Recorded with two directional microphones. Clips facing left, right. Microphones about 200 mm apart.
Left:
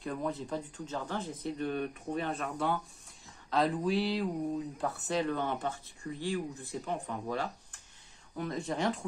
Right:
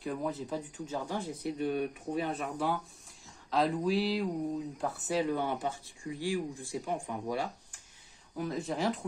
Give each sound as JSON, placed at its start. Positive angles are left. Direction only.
{"t": 0.0, "sound": "speech", "side_deg": -5}
{"t": 3.4, "sound": "speech", "side_deg": 0}